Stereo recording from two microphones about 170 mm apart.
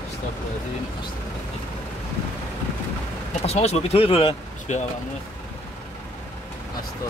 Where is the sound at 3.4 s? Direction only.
40° left (ahead or behind).